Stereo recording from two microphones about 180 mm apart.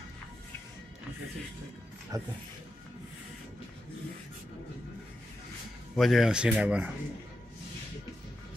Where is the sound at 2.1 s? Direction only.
20° right (ahead or behind).